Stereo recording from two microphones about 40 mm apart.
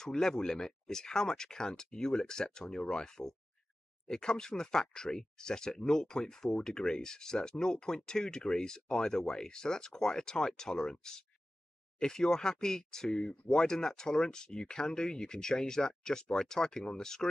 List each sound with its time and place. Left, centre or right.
0.0 s speech: centre